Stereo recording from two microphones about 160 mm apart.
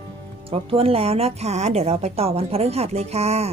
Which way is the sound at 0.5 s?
35° right (ahead or behind).